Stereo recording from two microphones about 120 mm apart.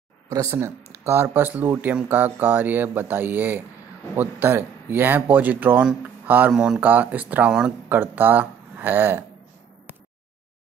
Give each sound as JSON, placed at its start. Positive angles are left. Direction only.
{"t": 0.3, "sound": "speech", "side_deg": -25}